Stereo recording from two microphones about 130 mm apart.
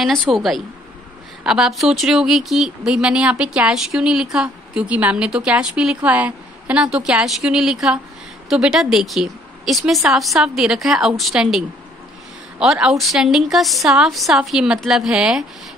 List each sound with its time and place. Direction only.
0.0 s speech: centre (ahead or behind)